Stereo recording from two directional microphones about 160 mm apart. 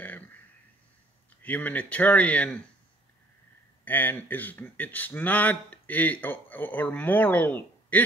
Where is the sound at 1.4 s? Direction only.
10° left (ahead or behind).